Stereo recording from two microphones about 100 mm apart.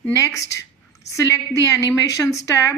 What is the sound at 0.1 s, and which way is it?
A woman's voice, 30° left (ahead or behind).